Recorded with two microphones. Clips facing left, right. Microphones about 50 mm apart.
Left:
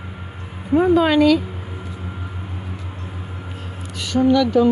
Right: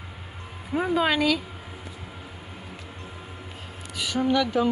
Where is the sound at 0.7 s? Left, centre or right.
Centre.